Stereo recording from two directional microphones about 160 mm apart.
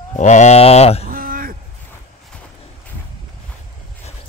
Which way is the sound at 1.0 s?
65° right (ahead or behind).